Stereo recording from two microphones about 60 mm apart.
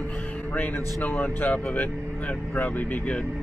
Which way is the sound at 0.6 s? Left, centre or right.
Left.